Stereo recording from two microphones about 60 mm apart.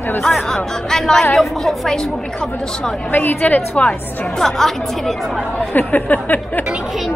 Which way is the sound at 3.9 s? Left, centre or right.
Centre.